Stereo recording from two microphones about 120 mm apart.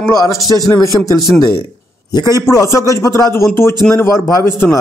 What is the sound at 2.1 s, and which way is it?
Speech, 35° left (ahead or behind).